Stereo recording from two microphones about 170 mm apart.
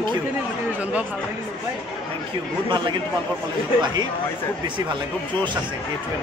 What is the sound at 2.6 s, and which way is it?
Speech, 25° right (ahead or behind).